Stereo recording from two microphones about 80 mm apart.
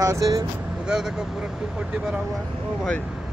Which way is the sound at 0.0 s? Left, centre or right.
Right.